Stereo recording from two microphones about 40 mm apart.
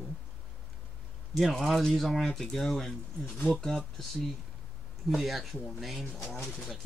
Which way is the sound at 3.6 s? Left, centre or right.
Centre.